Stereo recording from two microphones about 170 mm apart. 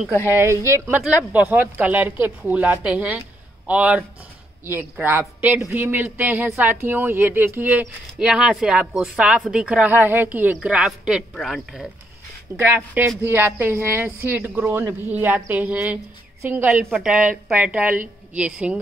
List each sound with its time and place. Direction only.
0.3 s speech: 15° right (ahead or behind)
5.7 s speech: 10° right (ahead or behind)
12.5 s speech: 15° right (ahead or behind)